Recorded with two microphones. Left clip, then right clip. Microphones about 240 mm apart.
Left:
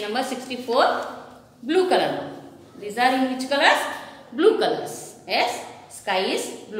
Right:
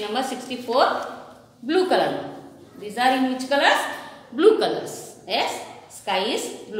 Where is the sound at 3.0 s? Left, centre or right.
Centre.